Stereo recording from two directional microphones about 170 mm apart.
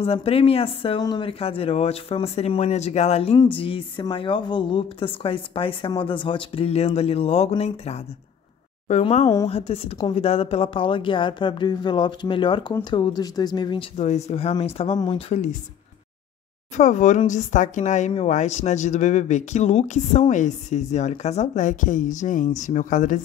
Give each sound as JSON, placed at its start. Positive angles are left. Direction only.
{"t": 0.0, "sound": "a woman's voice", "side_deg": 35}
{"t": 16.7, "sound": "speech", "side_deg": 45}